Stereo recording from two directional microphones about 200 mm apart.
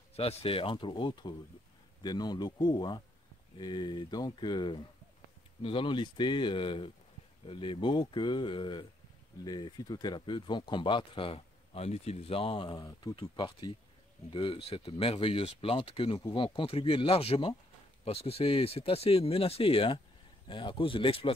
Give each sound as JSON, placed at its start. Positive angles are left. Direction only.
{"t": 0.1, "sound": "speech", "side_deg": 30}